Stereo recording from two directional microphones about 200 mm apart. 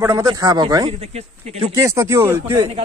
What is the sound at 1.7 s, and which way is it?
Speech, 15° right (ahead or behind).